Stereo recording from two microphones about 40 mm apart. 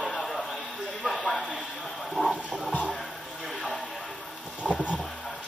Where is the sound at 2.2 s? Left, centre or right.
Left.